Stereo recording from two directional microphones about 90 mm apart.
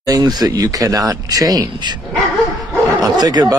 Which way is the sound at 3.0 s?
45° right (ahead or behind).